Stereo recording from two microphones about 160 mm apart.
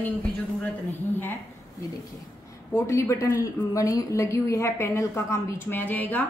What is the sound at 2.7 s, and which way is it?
Speech, 15° left (ahead or behind).